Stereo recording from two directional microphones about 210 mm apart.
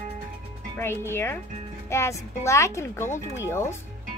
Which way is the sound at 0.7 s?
10° left (ahead or behind).